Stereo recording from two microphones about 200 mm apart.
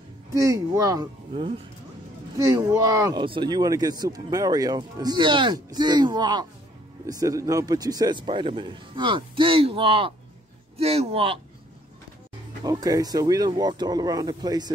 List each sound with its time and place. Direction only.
0.3 s a man's voice: 15° right (ahead or behind)
12.6 s speech: 20° right (ahead or behind)